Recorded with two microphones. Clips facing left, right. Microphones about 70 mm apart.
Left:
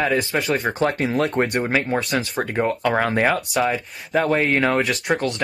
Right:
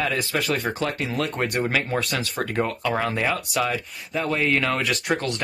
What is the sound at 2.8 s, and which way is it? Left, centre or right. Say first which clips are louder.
Speech: left 5 dB; left.